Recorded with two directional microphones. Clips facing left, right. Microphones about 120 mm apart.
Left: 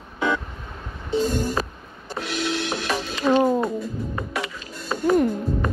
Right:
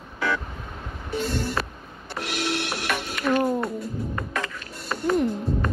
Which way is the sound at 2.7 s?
30° left (ahead or behind).